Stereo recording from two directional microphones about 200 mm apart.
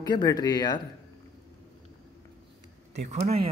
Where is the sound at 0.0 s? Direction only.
20° left (ahead or behind).